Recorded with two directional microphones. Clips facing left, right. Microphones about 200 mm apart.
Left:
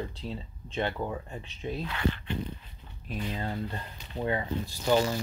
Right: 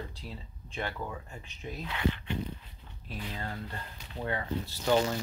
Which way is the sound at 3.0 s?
15° left (ahead or behind).